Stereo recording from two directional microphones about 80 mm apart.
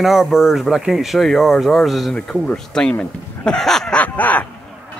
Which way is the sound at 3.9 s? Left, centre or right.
Centre.